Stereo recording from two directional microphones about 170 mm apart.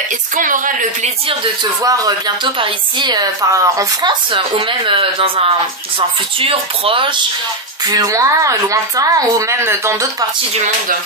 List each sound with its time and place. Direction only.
0.4 s a woman's voice: 50° right (ahead or behind)
1.4 s speech: 20° right (ahead or behind)
7.9 s speech: 20° right (ahead or behind)